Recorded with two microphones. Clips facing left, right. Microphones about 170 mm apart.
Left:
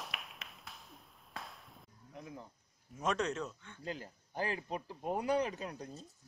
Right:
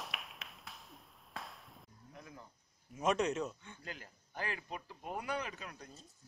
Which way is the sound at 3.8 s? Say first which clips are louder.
Left 8 dB; 30° left (ahead or behind).